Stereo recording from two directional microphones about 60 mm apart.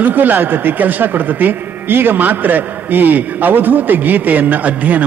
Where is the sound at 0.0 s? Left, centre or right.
Right.